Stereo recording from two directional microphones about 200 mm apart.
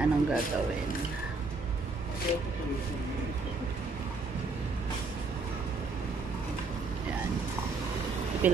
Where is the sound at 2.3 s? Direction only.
30° left (ahead or behind).